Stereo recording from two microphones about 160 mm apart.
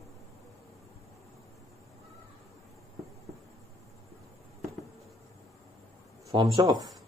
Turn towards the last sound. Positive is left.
turn(degrees=-25)  # may be behind; listen again after turning